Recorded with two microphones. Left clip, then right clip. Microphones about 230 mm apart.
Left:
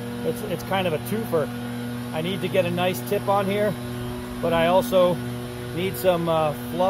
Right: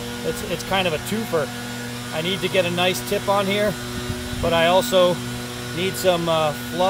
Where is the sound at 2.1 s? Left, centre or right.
Centre.